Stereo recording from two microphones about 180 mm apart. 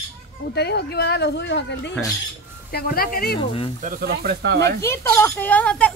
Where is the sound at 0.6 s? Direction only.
65° left (ahead or behind).